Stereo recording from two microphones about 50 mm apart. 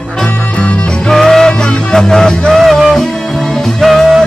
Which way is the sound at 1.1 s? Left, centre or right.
Centre.